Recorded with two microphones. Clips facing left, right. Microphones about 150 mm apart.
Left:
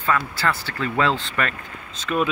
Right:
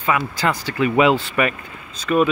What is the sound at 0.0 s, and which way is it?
Speech, 15° right (ahead or behind).